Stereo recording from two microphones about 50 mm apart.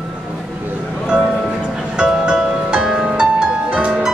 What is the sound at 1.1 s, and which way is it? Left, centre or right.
Music, right.